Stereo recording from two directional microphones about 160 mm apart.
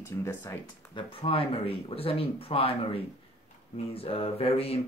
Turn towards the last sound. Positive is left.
turn(degrees=40)  # may be behind; listen again after turning